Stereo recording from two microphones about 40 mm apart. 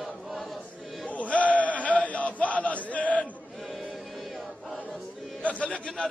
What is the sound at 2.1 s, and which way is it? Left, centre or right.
Chant, left.